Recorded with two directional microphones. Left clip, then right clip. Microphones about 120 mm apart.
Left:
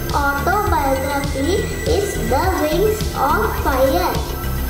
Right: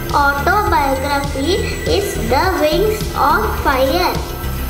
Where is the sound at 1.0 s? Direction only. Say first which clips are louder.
Right 3 dB; 25° right (ahead or behind).